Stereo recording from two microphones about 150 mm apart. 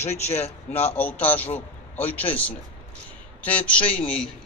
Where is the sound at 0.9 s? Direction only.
10° left (ahead or behind).